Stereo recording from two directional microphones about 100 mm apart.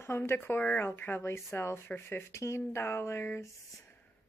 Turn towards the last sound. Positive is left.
turn(degrees=20)  # may be behind; listen again after turning